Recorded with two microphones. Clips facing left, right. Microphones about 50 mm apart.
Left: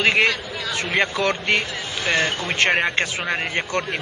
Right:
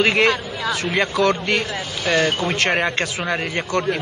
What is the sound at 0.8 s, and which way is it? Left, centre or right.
Speech, left.